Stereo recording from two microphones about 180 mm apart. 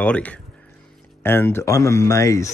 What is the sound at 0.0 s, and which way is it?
Speech, 5° left (ahead or behind).